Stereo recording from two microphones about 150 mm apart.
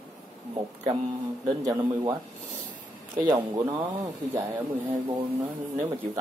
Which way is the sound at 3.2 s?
25° right (ahead or behind).